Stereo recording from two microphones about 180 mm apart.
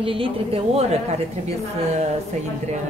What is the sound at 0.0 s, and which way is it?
Speech, 30° right (ahead or behind).